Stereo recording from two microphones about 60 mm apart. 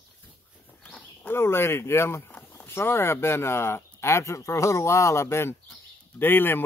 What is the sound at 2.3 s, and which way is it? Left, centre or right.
Speech, left.